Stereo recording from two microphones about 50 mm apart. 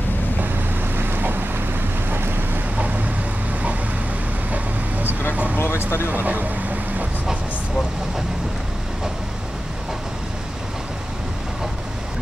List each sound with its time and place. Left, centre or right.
0.9 s boat: right
5.6 s a sound: left
6.1 s vehicle: right